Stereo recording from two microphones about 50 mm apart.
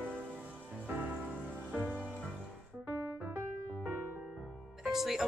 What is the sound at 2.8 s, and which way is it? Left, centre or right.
Music, right.